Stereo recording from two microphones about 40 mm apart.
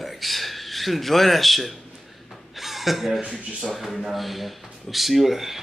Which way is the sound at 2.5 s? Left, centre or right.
Centre.